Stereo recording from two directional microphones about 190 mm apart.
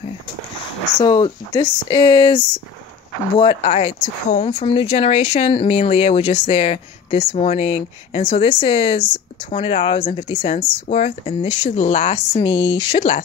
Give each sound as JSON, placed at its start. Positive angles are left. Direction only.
{"t": 1.0, "sound": "speech", "side_deg": 20}